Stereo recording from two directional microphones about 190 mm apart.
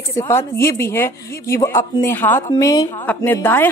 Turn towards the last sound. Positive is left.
turn(degrees=10)  # may be behind; listen again after turning